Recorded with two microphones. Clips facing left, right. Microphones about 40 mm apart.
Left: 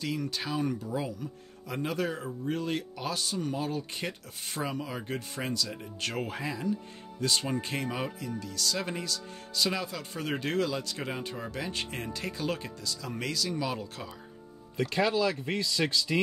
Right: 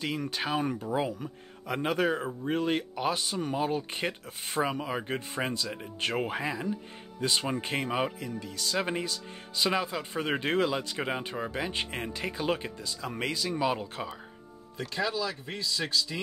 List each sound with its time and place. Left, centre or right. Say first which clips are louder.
0.0 s speech: right 1 dB; right
14.9 s speech: left 4 dB; left